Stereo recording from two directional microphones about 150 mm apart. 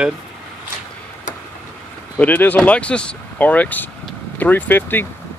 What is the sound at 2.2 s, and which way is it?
Speech, 10° left (ahead or behind).